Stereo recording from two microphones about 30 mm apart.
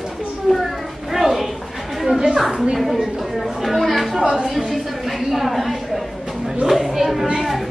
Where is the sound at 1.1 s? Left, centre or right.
Centre.